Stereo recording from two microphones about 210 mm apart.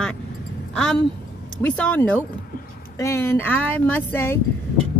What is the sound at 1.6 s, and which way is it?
Speech, 5° left (ahead or behind).